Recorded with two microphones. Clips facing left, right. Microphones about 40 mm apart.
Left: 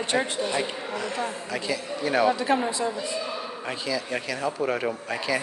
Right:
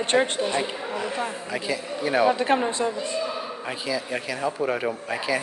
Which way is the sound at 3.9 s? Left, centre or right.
Centre.